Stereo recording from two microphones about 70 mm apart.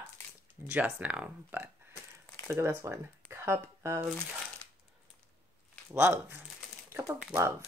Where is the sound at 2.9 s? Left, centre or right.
Right.